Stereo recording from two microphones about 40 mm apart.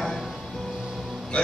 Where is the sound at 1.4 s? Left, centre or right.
Left.